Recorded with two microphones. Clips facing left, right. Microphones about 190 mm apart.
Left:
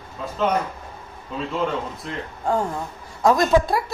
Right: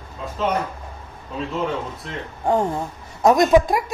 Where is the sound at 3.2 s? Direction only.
20° right (ahead or behind).